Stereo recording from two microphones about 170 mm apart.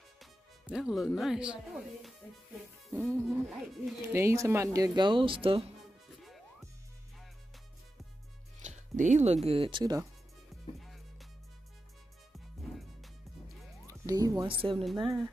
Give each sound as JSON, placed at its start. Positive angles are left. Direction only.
{"t": 0.2, "sound": "speech", "side_deg": -5}
{"t": 2.9, "sound": "music", "side_deg": -15}
{"t": 3.3, "sound": "music", "side_deg": 0}
{"t": 4.0, "sound": "speech", "side_deg": -15}
{"t": 8.5, "sound": "speech", "side_deg": -45}
{"t": 10.5, "sound": "music", "side_deg": 0}
{"t": 12.3, "sound": "music", "side_deg": 0}
{"t": 13.8, "sound": "speech", "side_deg": -20}
{"t": 14.6, "sound": "speech", "side_deg": -35}